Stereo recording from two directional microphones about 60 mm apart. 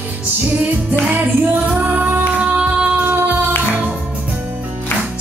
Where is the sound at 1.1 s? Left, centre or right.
Right.